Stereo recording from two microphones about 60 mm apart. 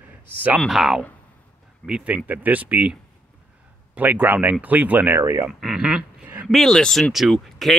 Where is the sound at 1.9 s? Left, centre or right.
Right.